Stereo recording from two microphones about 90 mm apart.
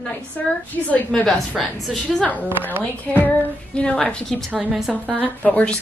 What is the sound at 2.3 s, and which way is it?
A woman's voice, 20° left (ahead or behind).